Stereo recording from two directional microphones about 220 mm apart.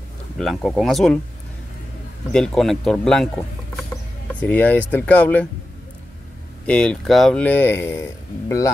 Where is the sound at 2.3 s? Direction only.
Centre (ahead or behind).